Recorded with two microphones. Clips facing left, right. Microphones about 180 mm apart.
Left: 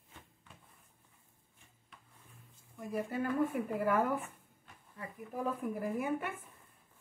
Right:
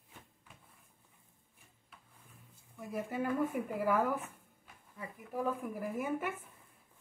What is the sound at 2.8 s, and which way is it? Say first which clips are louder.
Speech: left 1 dB; 5° right (ahead or behind).